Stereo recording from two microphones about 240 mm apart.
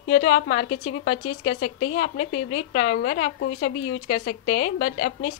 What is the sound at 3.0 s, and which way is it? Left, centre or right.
Speech, left.